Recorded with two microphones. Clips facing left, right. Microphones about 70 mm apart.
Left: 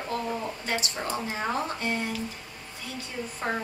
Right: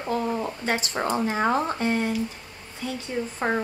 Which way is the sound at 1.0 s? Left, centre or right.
Right.